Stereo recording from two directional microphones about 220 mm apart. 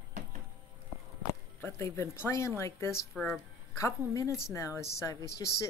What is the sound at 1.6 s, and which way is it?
Music, 10° left (ahead or behind).